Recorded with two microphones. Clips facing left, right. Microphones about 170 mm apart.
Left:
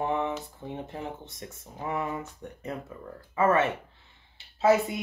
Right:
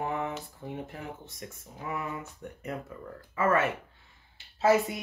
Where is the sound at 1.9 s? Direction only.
25° left (ahead or behind).